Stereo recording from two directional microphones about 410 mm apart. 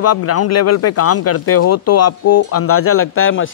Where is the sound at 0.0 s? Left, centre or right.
Left.